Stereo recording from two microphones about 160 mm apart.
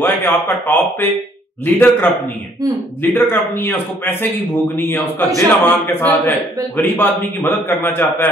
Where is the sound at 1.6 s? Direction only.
10° left (ahead or behind).